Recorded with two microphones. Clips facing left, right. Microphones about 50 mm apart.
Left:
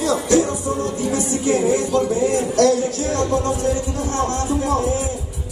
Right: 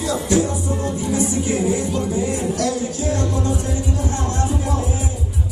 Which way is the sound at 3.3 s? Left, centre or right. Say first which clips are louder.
Left 3 dB; left.